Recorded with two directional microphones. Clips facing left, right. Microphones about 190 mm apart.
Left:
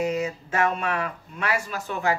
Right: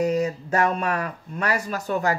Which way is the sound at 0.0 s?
40° right (ahead or behind).